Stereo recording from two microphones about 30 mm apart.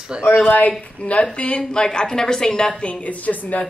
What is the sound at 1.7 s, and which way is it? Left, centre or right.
A woman's voice, left.